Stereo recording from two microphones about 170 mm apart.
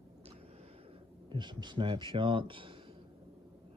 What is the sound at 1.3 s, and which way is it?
Speech, 25° right (ahead or behind).